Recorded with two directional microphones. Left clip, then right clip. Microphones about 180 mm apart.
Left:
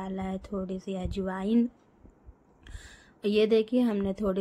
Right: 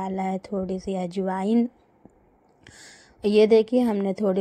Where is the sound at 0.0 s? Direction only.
25° right (ahead or behind).